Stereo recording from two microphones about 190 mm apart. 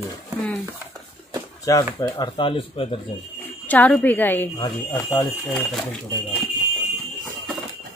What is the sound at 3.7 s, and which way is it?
A woman's voice, 10° left (ahead or behind).